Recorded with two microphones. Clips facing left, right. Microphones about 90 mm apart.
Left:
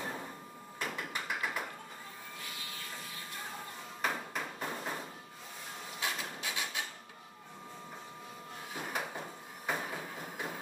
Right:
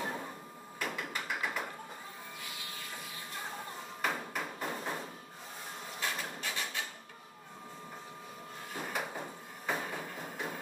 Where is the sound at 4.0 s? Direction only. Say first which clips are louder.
Even; 5° right (ahead or behind).